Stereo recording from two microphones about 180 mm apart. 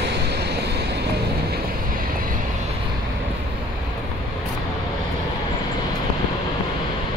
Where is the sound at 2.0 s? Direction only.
50° right (ahead or behind).